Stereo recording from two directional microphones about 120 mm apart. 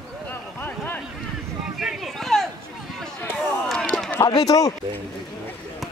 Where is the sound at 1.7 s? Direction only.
Centre (ahead or behind).